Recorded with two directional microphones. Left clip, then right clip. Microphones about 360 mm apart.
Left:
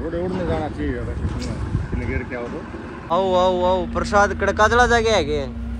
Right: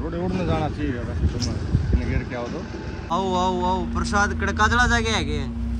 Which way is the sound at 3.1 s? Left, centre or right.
Centre.